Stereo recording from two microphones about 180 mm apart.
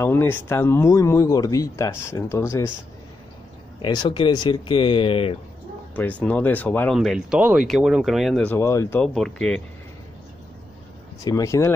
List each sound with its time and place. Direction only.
0.0 s speech: 10° left (ahead or behind)
3.8 s speech: 25° left (ahead or behind)
5.9 s speech: 10° left (ahead or behind)
7.0 s speech: centre (ahead or behind); by 9.0 s 15° left (ahead or behind)
9.0 s speech: 5° left (ahead or behind)
11.2 s speech: 20° left (ahead or behind)